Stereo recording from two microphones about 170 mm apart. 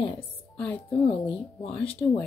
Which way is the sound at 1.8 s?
35° left (ahead or behind).